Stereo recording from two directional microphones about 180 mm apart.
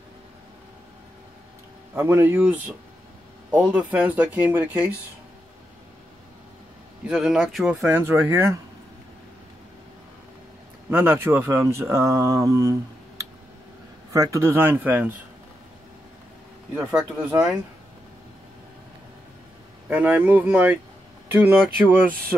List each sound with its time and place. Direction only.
2.0 s speech: 10° right (ahead or behind)
7.1 s speech: 5° right (ahead or behind)
10.9 s speech: 15° right (ahead or behind)
14.1 s speech: 15° right (ahead or behind)
16.7 s speech: 10° right (ahead or behind)
19.9 s speech: 10° right (ahead or behind)